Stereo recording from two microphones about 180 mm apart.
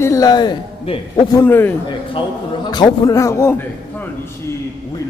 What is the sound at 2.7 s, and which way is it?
Speech, 20° left (ahead or behind).